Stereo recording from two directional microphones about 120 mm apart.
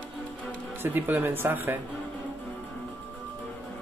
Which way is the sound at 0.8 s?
15° right (ahead or behind).